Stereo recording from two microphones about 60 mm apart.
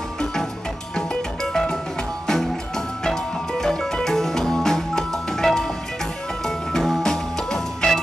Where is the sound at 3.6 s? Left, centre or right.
Centre.